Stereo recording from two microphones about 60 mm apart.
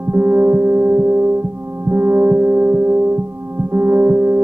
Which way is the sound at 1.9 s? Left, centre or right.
Right.